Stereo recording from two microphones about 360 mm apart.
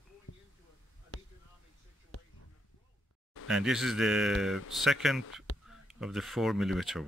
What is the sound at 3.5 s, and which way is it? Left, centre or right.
Speech, centre.